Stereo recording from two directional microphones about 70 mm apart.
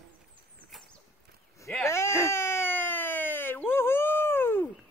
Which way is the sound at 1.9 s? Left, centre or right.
Left.